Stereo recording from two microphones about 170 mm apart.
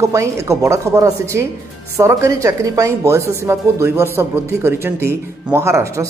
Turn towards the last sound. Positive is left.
turn(degrees=-15)  # may be behind; listen again after turning